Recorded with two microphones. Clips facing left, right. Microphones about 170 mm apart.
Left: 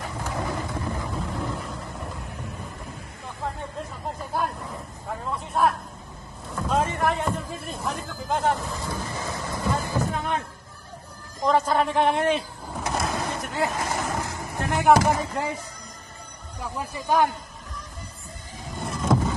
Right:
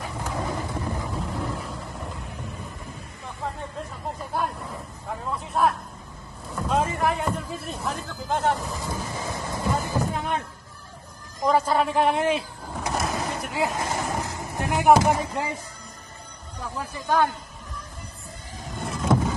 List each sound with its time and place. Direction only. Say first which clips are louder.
0.2 s boat: even; 15° right (ahead or behind)
0.9 s vehicle: even; centre (ahead or behind)
4.4 s vehicle: even; centre (ahead or behind)
6.5 s a sound: even; centre (ahead or behind)
8.8 s a sound: even; 15° right (ahead or behind)
10.0 s a sound: even; centre (ahead or behind)
11.4 s speech: even; 5° right (ahead or behind)
13.1 s vehicle: even; 5° right (ahead or behind)
16.6 s speech: left 1 dB; 15° left (ahead or behind)
18.8 s vehicle: even; centre (ahead or behind)